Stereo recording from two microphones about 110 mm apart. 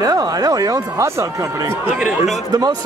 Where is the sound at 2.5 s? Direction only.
35° right (ahead or behind).